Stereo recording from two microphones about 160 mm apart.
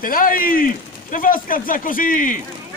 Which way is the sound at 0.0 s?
60° left (ahead or behind).